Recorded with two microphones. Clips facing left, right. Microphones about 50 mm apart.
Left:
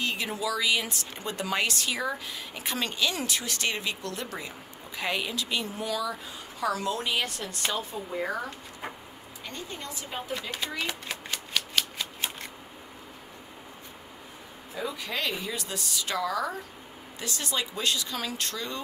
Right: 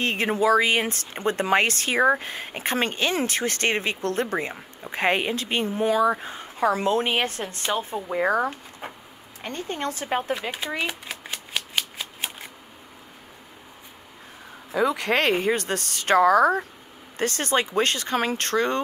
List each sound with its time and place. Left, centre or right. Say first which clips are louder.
0.0 s speech: right 8 dB; right
10.9 s shuffling cards: right 1 dB; centre
14.7 s speech: right 11 dB; right